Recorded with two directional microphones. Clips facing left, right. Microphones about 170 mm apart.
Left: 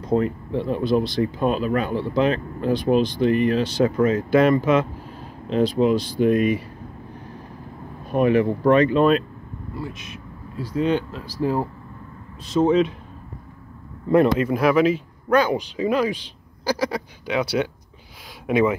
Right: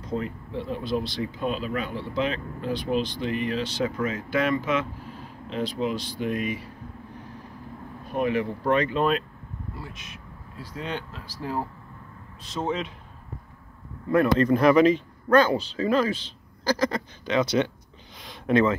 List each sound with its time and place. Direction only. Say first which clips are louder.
0.1 s speech: left 9 dB; 55° left (ahead or behind)
8.1 s speech: left 7 dB; 55° left (ahead or behind)
10.8 s speech: left 12 dB; 5° left (ahead or behind)
12.6 s speech: left 11 dB; centre (ahead or behind)
14.0 s speech: left 5 dB; 20° left (ahead or behind)
14.4 s speech: even; 5° left (ahead or behind)